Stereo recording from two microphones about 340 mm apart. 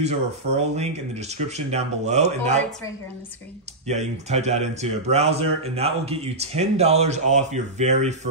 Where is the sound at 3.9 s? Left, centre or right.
Centre.